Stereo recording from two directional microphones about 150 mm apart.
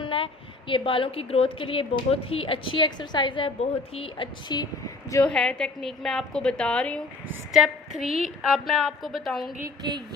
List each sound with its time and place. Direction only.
0.0 s a woman's voice: 35° left (ahead or behind)
5.2 s a woman's voice: 5° left (ahead or behind)